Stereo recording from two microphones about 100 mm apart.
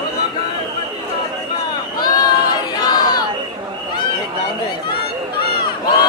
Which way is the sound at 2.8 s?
45° left (ahead or behind).